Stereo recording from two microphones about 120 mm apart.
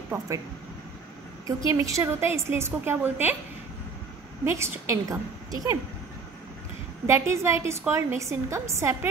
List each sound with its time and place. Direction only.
0.1 s a woman's voice: 25° right (ahead or behind)
1.7 s a woman's voice: 25° right (ahead or behind)
4.5 s a woman's voice: 25° right (ahead or behind)
7.1 s a woman's voice: 25° right (ahead or behind)